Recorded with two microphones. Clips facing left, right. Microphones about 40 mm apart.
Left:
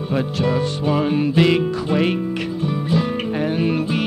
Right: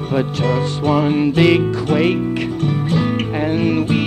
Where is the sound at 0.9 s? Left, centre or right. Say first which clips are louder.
Right 3 dB; centre.